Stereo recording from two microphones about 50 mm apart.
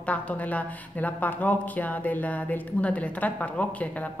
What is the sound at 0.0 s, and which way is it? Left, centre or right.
A woman's voice, left.